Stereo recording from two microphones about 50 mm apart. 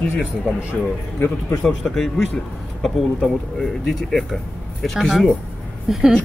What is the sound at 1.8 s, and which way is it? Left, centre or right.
Speech, centre.